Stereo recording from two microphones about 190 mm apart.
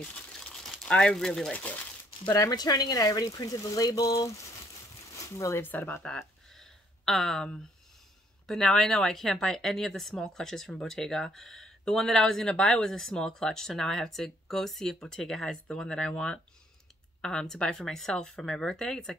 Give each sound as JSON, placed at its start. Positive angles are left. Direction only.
{"t": 0.0, "sound": "speech", "side_deg": 5}
{"t": 2.2, "sound": "speech", "side_deg": 20}